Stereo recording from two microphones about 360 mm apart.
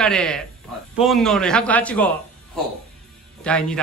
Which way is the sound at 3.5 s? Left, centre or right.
Centre.